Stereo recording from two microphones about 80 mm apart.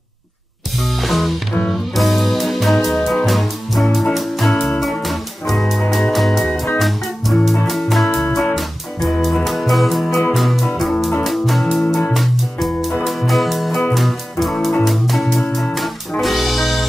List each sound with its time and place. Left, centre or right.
1.0 s music: centre